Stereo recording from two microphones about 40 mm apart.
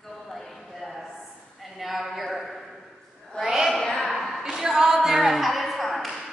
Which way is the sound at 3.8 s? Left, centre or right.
Centre.